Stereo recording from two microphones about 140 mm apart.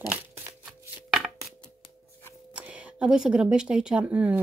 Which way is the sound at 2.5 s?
10° right (ahead or behind).